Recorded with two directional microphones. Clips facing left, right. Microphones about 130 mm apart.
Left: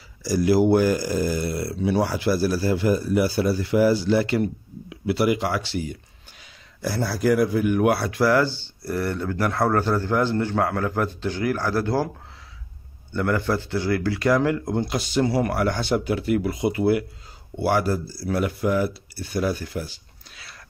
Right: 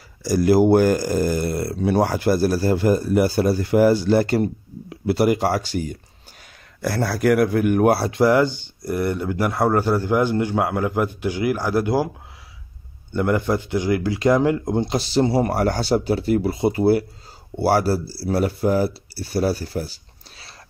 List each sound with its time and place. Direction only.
0.2 s speech: 50° right (ahead or behind)
6.8 s speech: 60° right (ahead or behind)
7.9 s speech: 30° right (ahead or behind); by 12.1 s 15° right (ahead or behind)
13.1 s speech: 20° right (ahead or behind); by 20.5 s 35° right (ahead or behind)